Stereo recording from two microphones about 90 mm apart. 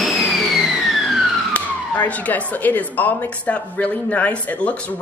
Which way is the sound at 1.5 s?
15° left (ahead or behind).